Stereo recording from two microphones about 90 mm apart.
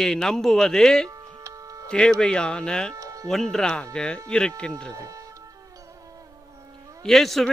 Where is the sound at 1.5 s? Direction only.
40° right (ahead or behind).